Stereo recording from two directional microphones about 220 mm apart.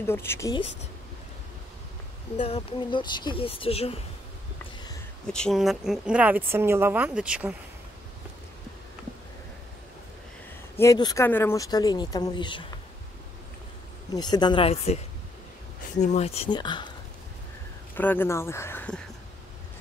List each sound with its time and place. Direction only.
0.0 s speech: 10° left (ahead or behind)
2.3 s speech: 25° left (ahead or behind)
5.2 s a woman's voice: 5° left (ahead or behind)
10.8 s speech: 15° left (ahead or behind)
14.1 s speech: 20° left (ahead or behind)
16.0 s speech: 30° left (ahead or behind)
17.9 s speech: 10° left (ahead or behind)